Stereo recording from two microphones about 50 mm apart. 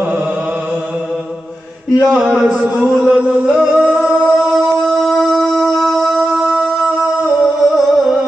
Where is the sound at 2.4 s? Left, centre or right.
Right.